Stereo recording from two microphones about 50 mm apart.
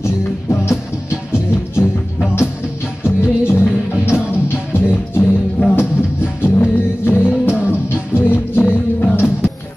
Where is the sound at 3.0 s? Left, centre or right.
Left.